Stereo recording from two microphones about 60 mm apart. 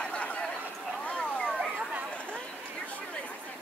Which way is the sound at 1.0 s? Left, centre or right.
Centre.